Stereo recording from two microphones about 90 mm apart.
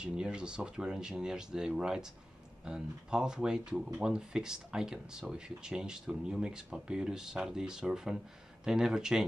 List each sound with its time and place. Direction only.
0.0 s speech: 10° right (ahead or behind)